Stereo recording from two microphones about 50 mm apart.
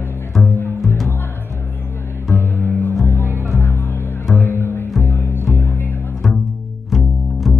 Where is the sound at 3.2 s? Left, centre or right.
Right.